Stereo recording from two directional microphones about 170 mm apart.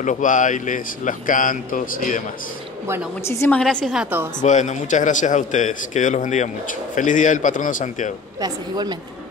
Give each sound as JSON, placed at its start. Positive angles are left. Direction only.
{"t": 0.0, "sound": "a man's voice", "side_deg": 50}
{"t": 3.3, "sound": "a woman's voice", "side_deg": 15}
{"t": 3.6, "sound": "a woman's voice", "side_deg": 0}
{"t": 4.4, "sound": "a man's voice", "side_deg": 45}
{"t": 8.4, "sound": "speech", "side_deg": -25}